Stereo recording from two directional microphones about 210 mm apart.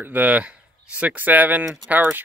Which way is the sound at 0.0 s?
10° right (ahead or behind).